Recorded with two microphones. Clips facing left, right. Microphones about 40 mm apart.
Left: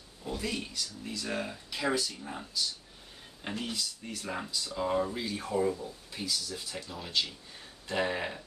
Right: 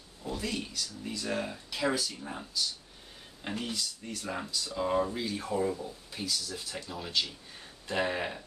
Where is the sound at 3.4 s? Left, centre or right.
Centre.